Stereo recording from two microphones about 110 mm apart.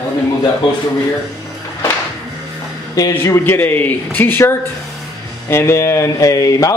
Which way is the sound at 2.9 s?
30° left (ahead or behind).